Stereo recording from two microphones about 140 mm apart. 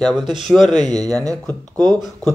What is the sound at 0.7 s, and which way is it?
Speech, 30° right (ahead or behind).